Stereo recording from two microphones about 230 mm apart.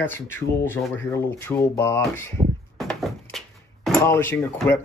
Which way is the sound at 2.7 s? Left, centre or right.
Centre.